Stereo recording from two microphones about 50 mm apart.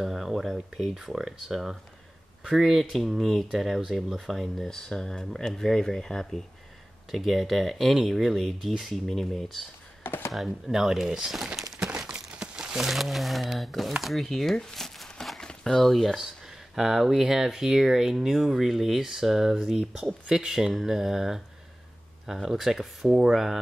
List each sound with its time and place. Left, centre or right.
0.0 s speech: centre
7.1 s speech: centre
10.0 s speech: left
10.3 s speech: centre
11.5 s a sound: centre
12.4 s speech: centre
16.2 s speech: centre